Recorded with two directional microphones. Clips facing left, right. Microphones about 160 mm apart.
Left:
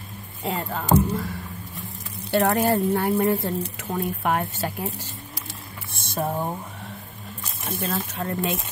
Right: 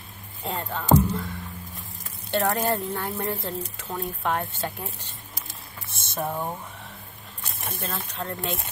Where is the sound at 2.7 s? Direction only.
65° left (ahead or behind).